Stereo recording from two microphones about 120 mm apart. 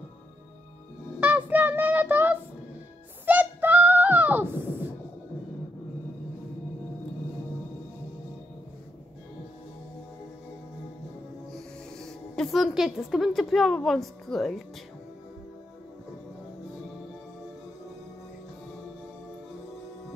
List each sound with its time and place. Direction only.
1.2 s child singing: 15° right (ahead or behind)
3.3 s a sound: 15° right (ahead or behind)
12.0 s a woman's voice: 5° left (ahead or behind)